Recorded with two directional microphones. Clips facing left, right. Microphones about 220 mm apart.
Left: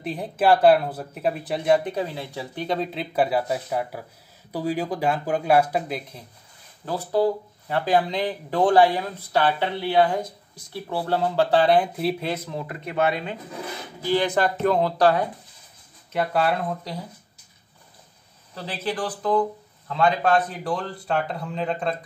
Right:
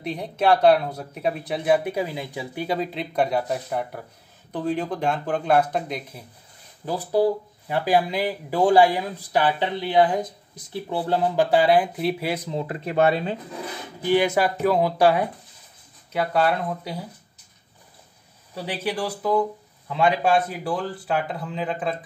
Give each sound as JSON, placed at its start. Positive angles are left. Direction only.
{"t": 0.0, "sound": "speech", "side_deg": 0}
{"t": 6.9, "sound": "speech", "side_deg": -15}
{"t": 12.4, "sound": "speech", "side_deg": -25}
{"t": 14.0, "sound": "speech", "side_deg": -10}
{"t": 16.1, "sound": "speech", "side_deg": 0}
{"t": 18.5, "sound": "speech", "side_deg": -10}